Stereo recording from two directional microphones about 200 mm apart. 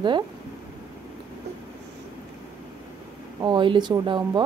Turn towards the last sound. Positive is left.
turn(degrees=-20)  # may be behind; listen again after turning